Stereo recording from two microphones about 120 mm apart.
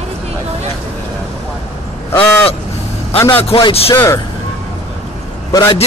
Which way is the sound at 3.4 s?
50° left (ahead or behind).